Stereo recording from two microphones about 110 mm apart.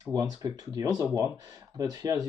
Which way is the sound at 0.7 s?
35° right (ahead or behind).